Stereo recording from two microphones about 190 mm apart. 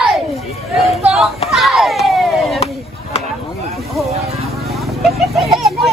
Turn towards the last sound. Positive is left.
turn(degrees=0)  # may be behind; listen again after turning